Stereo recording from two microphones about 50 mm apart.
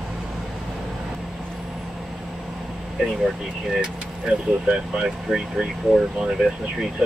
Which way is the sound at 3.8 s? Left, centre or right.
Centre.